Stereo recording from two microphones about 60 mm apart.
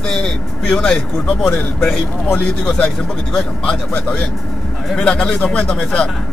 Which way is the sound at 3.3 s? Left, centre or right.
Centre.